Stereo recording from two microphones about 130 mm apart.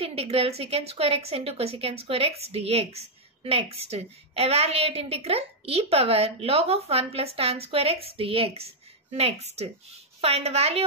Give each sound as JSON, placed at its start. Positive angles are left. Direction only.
{"t": 0.0, "sound": "a woman's voice", "side_deg": -50}